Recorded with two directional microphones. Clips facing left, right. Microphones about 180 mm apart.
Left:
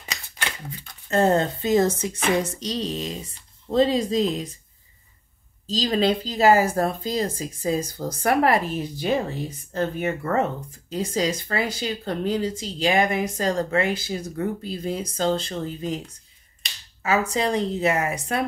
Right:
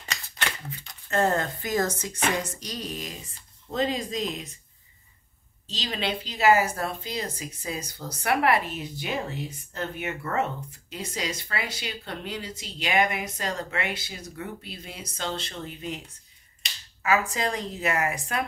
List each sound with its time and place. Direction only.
1.1 s speech: 25° left (ahead or behind)
5.7 s speech: 40° left (ahead or behind)
17.0 s speech: 30° left (ahead or behind)